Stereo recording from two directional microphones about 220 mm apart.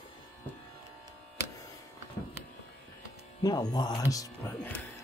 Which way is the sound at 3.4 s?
15° left (ahead or behind).